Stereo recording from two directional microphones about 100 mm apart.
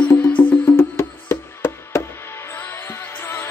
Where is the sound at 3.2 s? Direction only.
25° left (ahead or behind).